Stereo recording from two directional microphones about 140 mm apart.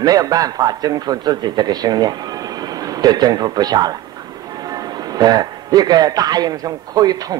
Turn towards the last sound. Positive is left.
turn(degrees=-25)  # may be behind; listen again after turning